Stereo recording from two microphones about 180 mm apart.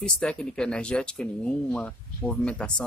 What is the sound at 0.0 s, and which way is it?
Speech, 5° left (ahead or behind).